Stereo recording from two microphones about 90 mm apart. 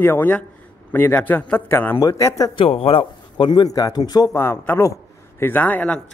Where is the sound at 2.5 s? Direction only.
80° left.